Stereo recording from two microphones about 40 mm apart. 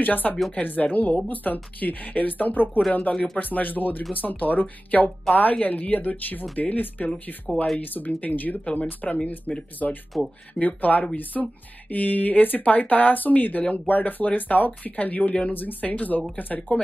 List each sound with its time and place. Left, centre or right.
0.0 s speech: left
2.9 s speech: left
11.3 s speech: centre
11.9 s speech: left